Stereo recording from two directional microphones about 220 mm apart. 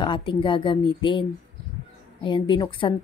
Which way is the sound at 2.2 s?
20° left (ahead or behind).